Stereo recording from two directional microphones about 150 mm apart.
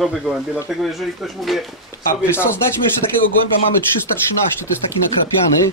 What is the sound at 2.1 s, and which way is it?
Speech, 15° left (ahead or behind).